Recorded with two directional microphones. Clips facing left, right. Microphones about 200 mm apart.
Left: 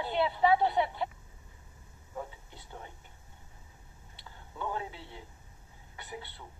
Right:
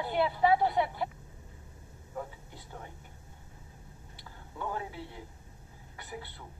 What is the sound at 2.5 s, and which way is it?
Whispering, 20° left (ahead or behind).